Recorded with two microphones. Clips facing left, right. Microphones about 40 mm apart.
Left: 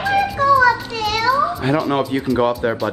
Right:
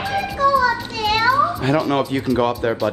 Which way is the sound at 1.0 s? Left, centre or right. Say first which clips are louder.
Right 2 dB; right.